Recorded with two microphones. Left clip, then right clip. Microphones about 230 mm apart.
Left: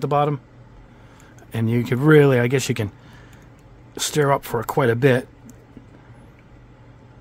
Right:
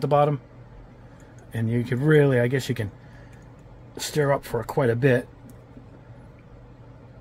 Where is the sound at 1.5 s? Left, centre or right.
Left.